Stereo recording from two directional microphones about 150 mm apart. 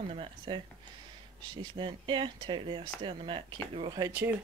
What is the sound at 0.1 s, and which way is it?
Speech, 40° right (ahead or behind).